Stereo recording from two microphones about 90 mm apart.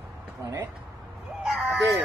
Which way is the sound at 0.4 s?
30° right (ahead or behind).